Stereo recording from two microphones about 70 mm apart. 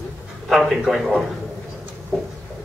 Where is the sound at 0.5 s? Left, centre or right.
Centre.